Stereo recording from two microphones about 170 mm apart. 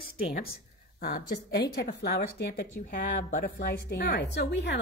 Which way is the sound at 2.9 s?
50° left (ahead or behind).